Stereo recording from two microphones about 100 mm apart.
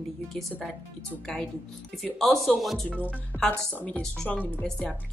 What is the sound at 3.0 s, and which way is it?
Speech, 15° left (ahead or behind).